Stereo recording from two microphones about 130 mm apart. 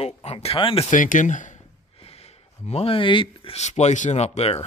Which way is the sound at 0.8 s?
85° left.